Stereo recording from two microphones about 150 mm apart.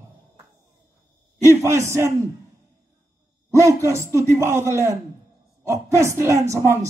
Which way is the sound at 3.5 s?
20° right (ahead or behind).